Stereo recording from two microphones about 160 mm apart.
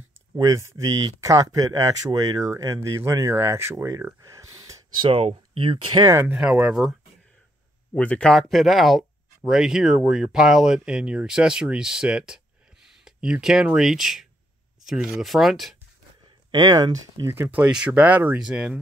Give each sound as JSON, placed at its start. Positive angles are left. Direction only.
{"t": 0.3, "sound": "speech", "side_deg": -20}
{"t": 5.1, "sound": "speech", "side_deg": -35}
{"t": 6.0, "sound": "speech", "side_deg": -15}
{"t": 7.9, "sound": "speech", "side_deg": 10}
{"t": 16.5, "sound": "speech", "side_deg": -25}